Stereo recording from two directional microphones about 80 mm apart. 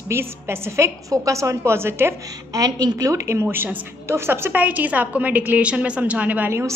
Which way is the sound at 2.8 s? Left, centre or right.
Right.